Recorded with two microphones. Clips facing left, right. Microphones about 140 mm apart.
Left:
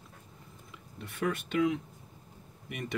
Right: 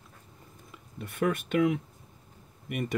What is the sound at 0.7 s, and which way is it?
Speech, 50° right (ahead or behind).